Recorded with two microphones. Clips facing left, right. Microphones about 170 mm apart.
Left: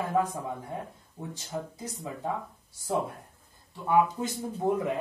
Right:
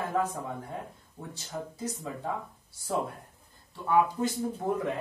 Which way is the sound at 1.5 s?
10° left (ahead or behind).